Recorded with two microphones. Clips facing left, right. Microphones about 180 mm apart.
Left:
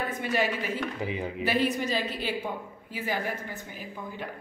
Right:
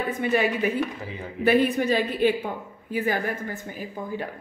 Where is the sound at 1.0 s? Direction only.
15° left (ahead or behind).